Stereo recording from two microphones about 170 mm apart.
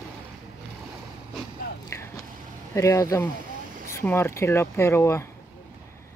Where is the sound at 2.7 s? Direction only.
20° left (ahead or behind).